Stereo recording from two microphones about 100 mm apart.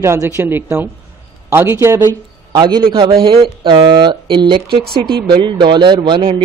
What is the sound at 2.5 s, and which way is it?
Speech, 45° right (ahead or behind).